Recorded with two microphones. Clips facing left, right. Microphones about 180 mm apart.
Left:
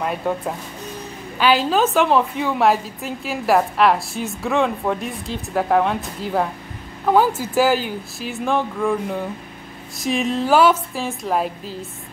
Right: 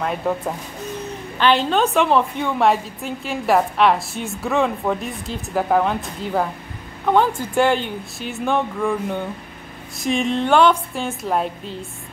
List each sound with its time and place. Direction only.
0.0 s a woman's voice: centre (ahead or behind)
1.4 s a woman's voice: 5° left (ahead or behind)